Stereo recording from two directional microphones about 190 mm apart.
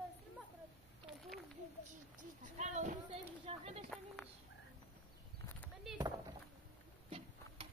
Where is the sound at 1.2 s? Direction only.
Centre (ahead or behind).